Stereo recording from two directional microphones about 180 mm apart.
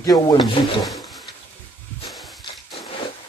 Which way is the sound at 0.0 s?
20° left (ahead or behind).